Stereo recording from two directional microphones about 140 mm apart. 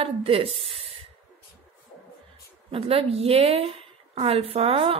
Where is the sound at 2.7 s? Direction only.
45° right (ahead or behind).